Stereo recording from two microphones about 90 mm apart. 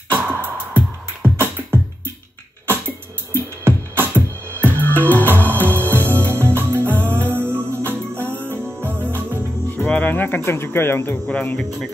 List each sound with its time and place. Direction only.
0.1 s music: 20° right (ahead or behind)
3.3 s music: 25° right (ahead or behind)
4.7 s music: 20° left (ahead or behind)
5.7 s music: 25° right (ahead or behind)
9.8 s speech: 15° left (ahead or behind)
11.2 s speech: 10° left (ahead or behind)